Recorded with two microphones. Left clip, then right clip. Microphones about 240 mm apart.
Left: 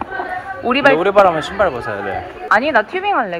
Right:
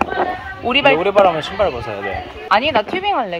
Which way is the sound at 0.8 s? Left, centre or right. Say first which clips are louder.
Left 2 dB; right.